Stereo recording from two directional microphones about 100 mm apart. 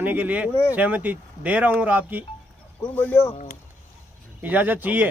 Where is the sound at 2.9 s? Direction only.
15° left (ahead or behind).